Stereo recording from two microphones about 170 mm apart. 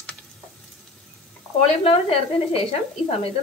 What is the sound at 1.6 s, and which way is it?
Speech, 35° left (ahead or behind).